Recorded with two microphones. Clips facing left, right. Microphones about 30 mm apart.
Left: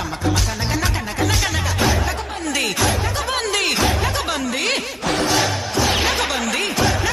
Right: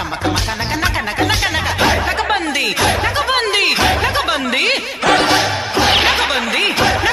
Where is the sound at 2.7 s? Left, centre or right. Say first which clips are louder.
Right 5 dB; right.